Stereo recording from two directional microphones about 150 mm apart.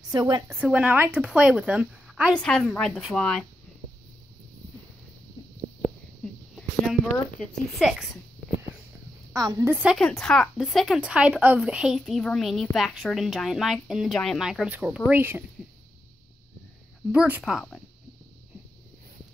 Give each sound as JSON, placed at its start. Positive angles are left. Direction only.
{"t": 0.1, "sound": "a woman's voice", "side_deg": -25}
{"t": 0.6, "sound": "a woman's voice", "side_deg": -10}
{"t": 2.3, "sound": "speech", "side_deg": 5}
{"t": 6.2, "sound": "a sound", "side_deg": 5}
{"t": 7.8, "sound": "speech", "side_deg": -5}
{"t": 9.3, "sound": "a woman's voice", "side_deg": -25}
{"t": 9.7, "sound": "a woman's voice", "side_deg": -10}
{"t": 9.9, "sound": "speech", "side_deg": 5}
{"t": 17.1, "sound": "speech", "side_deg": -5}